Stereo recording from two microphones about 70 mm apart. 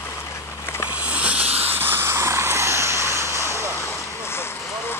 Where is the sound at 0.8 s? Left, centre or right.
Centre; by 3.7 s right.